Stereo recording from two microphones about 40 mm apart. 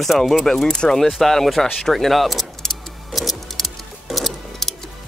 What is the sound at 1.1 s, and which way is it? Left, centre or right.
Vehicle, centre.